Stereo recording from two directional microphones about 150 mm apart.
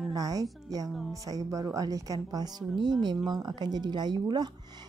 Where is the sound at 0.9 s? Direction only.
Centre (ahead or behind).